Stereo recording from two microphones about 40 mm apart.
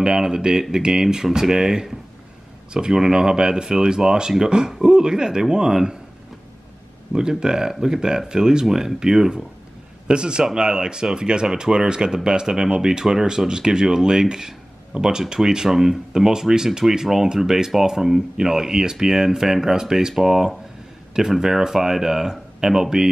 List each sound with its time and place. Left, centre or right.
0.0 s speech: centre
7.1 s speech: centre